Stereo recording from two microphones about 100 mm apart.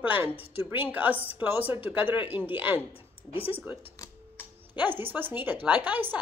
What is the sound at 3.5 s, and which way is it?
A woman's voice, 15° right (ahead or behind).